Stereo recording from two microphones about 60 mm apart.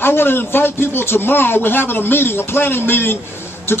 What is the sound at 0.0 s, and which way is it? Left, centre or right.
A man's voice, left.